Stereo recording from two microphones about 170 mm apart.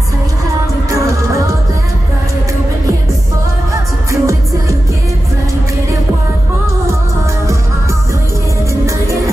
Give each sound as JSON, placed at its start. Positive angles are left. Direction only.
{"t": 4.1, "sound": "music", "side_deg": -20}